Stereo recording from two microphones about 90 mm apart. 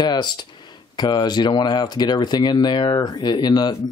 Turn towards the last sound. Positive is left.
turn(degrees=50)  # may be behind; listen again after turning